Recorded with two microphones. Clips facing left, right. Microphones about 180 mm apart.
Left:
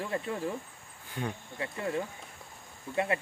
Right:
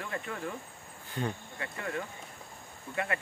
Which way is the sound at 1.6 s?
25° left (ahead or behind).